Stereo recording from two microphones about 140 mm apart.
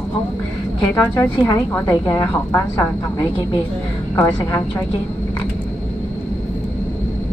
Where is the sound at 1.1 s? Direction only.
25° left (ahead or behind).